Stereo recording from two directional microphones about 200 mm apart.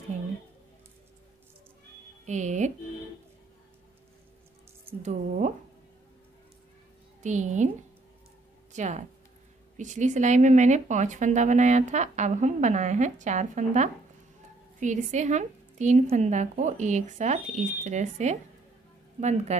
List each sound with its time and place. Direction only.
2.2 s speech: 35° right (ahead or behind)
5.0 s speech: 35° right (ahead or behind)
7.2 s speech: 35° right (ahead or behind)
8.7 s a woman's voice: 35° right (ahead or behind)